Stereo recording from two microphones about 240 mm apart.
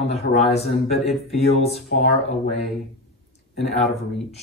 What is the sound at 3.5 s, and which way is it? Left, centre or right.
Speech, centre.